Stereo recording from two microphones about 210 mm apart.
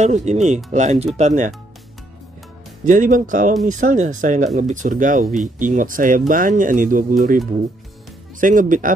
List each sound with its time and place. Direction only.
0.0 s speech: 35° right (ahead or behind)
2.8 s speech: 35° right (ahead or behind)
8.4 s speech: 40° right (ahead or behind)